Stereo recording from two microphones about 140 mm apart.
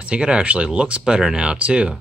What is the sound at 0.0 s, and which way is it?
Speech, 5° right (ahead or behind).